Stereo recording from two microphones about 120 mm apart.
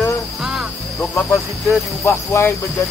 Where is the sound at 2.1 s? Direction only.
20° left (ahead or behind).